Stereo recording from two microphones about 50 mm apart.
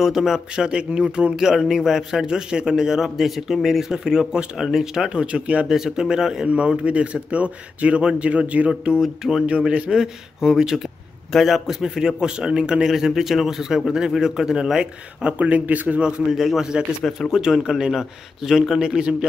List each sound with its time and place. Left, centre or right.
0.0 s a man's voice: centre
0.7 s a man's voice: centre
5.7 s a man's voice: centre; by 8.9 s right
9.0 s a sound: centre
9.8 s a man's voice: centre
12.9 s a man's voice: centre
15.3 s speech: right
16.3 s a sound: centre
17.3 s a man's voice: centre
18.9 s a man's voice: centre